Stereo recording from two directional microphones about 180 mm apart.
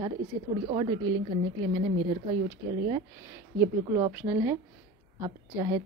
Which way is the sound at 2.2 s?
25° right (ahead or behind).